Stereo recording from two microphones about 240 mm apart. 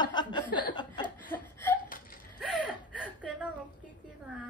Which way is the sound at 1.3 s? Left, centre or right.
Centre.